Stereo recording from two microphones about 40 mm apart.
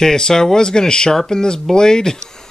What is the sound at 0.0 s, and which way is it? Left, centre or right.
Speech, centre.